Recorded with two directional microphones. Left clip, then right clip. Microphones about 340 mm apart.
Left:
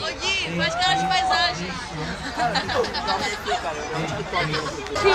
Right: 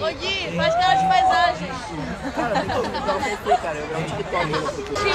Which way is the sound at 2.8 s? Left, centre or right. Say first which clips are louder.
Right 1 dB; centre.